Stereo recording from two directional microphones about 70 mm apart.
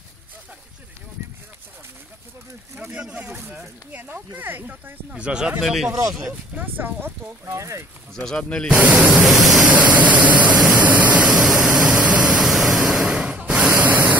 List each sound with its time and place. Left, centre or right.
2.8 s speech: centre
5.6 s vehicle: centre
5.9 s speech: right
6.5 s speech: right
7.4 s speech: right
8.1 s speech: centre
8.7 s speech: right
9.1 s vehicle: centre
9.7 s vehicle: right
10.8 s waterfall: right
11.4 s vehicle: centre
12.4 s vehicle: centre
13.0 s a sound: centre